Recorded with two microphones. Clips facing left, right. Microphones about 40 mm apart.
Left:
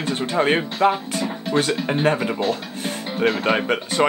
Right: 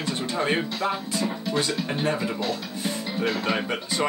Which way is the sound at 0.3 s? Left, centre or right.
Left.